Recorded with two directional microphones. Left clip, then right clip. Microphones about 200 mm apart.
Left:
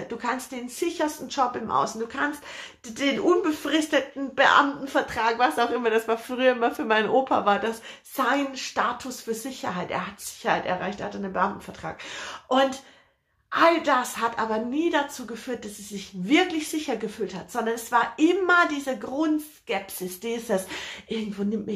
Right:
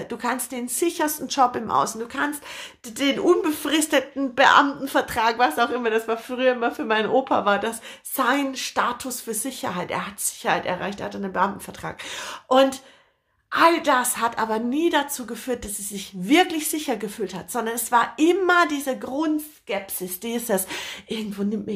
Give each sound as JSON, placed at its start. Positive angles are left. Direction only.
{"t": 0.1, "sound": "a woman's voice", "side_deg": -40}
{"t": 5.5, "sound": "a woman's voice", "side_deg": -25}
{"t": 20.3, "sound": "speech", "side_deg": -45}